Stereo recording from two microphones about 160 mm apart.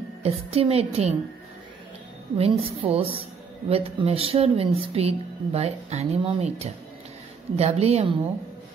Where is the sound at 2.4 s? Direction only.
35° right (ahead or behind).